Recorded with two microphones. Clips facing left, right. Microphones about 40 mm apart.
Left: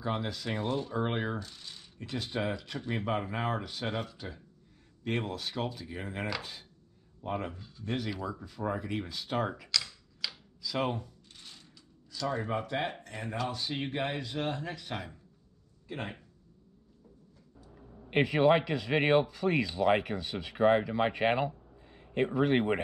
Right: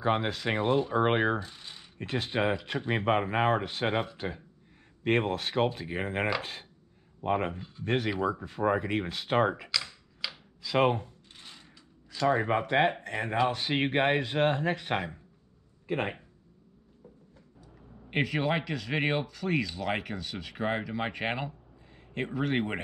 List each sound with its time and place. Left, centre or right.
0.0 s speech: right
1.0 s speech: right
1.4 s speech: right
2.0 s speech: right
5.0 s speech: right
9.7 s computer keyboard: centre
10.3 s a sound: right
12.9 s speech: right
17.0 s a sound: right
18.2 s speech: centre
21.1 s a sound: centre
22.1 s speech: centre